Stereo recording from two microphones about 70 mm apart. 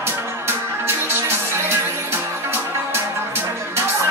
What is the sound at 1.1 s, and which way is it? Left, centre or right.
Music, right.